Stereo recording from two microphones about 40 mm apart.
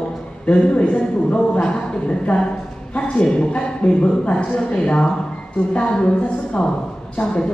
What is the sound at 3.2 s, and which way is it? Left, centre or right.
A man's voice, left.